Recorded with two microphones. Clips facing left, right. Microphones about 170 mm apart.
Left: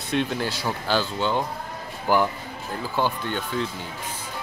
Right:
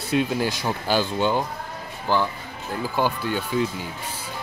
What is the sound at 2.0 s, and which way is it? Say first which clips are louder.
Speech: left 2 dB; 15° left (ahead or behind).